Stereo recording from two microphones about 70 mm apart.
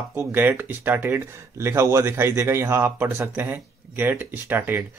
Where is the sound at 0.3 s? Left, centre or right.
Right.